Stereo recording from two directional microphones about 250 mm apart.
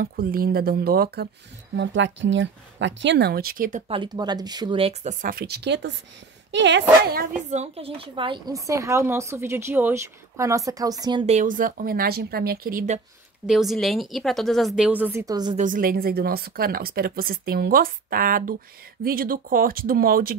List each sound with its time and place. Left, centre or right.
0.0 s speech: right
3.9 s a woman's voice: centre; by 7.2 s right
7.4 s a woman's voice: right
13.5 s speech: centre
15.5 s speech: right